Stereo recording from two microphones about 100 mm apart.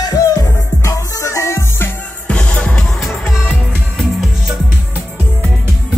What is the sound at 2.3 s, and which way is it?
Music, 10° left (ahead or behind).